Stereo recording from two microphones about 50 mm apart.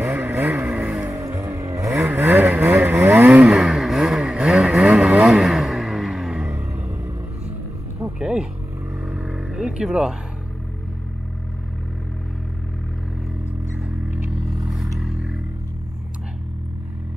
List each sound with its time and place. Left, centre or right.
0.1 s vehicle: right
0.7 s vehicle: right
1.1 s vehicle: right
2.0 s vehicle: right
3.0 s vehicle: right
3.4 s vehicle: centre
6.5 s music: right
8.0 s a sound: centre
9.0 s vehicle: centre
15.0 s a sound: centre